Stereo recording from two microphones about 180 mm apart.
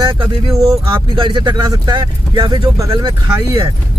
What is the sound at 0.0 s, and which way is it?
Speech, 25° right (ahead or behind).